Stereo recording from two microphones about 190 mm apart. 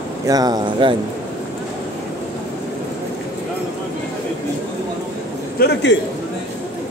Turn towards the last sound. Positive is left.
turn(degrees=55)  # may be behind; listen again after turning